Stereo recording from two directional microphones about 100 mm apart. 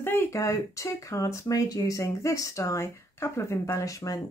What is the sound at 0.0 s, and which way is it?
Speech, 20° left (ahead or behind).